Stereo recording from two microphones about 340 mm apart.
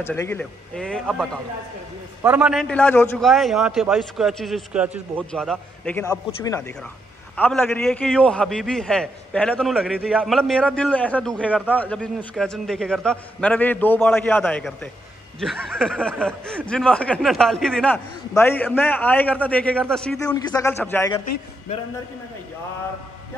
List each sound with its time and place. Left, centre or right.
0.0 s a man's voice: centre